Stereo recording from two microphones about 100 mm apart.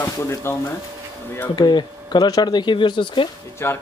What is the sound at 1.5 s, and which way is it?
Speech, 50° left (ahead or behind).